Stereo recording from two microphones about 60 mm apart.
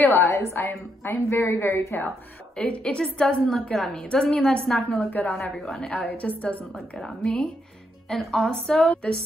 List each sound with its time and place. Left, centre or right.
0.0 s a woman's voice: left
0.7 s a woman's voice: left
2.5 s a woman's voice: centre
4.8 s a woman's voice: left
5.2 s a woman's voice: centre
5.9 s a woman's voice: left
8.1 s a woman's voice: centre
8.8 s a woman's voice: left